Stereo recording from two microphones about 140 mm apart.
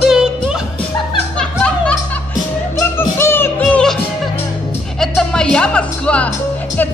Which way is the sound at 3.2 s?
15° left (ahead or behind).